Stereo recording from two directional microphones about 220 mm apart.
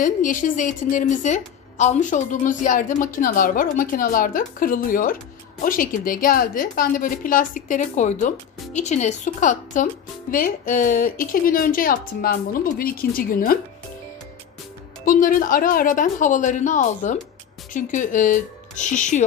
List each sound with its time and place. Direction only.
0.0 s a woman's voice: 35° left (ahead or behind)
15.0 s a woman's voice: 40° left (ahead or behind)